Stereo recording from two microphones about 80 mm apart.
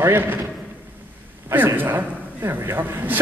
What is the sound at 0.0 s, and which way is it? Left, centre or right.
Speech, right.